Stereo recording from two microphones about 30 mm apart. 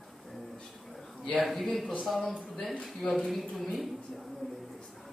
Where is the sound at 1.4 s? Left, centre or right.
Centre.